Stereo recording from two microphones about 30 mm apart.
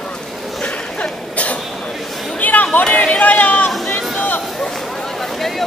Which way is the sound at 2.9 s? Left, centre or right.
Left.